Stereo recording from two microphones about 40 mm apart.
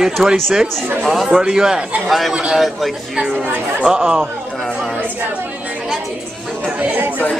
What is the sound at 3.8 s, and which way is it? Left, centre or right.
Speech, centre.